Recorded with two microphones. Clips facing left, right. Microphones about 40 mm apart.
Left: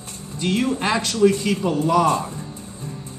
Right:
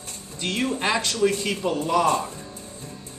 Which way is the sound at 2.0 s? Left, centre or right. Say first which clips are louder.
Left 2 dB; left.